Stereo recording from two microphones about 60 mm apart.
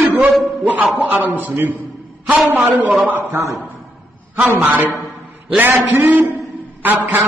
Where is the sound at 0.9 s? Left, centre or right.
Right.